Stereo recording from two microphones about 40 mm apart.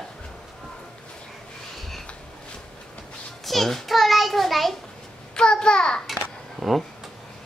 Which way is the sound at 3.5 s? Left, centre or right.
Centre.